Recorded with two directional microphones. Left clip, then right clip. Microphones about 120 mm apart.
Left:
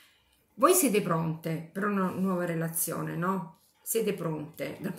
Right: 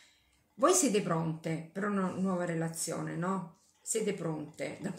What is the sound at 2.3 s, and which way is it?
A woman's voice, 40° left (ahead or behind).